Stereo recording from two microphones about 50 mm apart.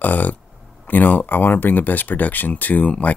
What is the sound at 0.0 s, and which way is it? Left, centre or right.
Speech, left.